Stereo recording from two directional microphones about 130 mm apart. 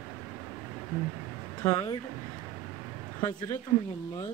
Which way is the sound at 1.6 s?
25° left (ahead or behind).